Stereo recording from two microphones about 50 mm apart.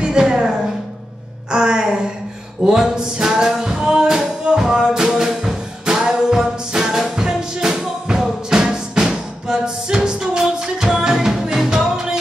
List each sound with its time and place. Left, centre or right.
0.0 s speech: centre
1.5 s music: centre